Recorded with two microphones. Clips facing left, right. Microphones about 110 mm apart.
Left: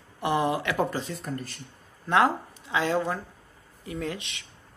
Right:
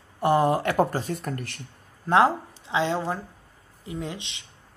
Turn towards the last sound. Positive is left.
turn(degrees=-20)  # may be behind; listen again after turning